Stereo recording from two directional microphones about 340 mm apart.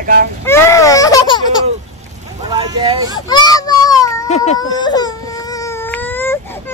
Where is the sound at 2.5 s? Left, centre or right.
Centre.